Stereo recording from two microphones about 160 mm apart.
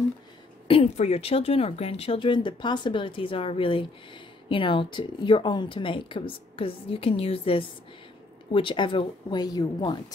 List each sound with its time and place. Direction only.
0.7 s speech: 40° left (ahead or behind)